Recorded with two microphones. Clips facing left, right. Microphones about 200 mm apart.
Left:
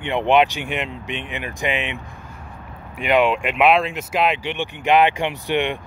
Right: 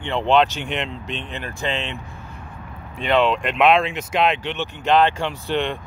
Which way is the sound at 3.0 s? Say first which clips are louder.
Left 1 dB; 10° left (ahead or behind).